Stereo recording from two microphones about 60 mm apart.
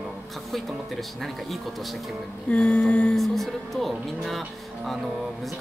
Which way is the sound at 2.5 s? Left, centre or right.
Centre.